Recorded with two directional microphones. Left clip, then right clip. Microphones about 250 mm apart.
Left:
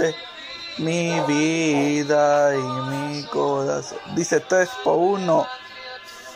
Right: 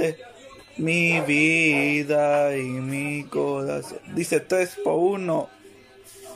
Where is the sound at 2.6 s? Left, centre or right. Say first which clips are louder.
Left 3 dB; left.